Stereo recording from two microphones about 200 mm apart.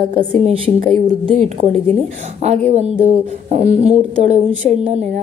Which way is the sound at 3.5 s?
35° right (ahead or behind).